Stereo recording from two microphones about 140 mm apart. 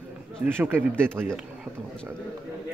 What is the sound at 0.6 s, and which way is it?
Speech, 15° right (ahead or behind).